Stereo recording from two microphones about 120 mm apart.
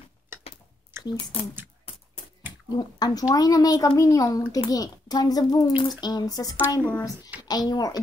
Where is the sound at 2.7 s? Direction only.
35° left (ahead or behind).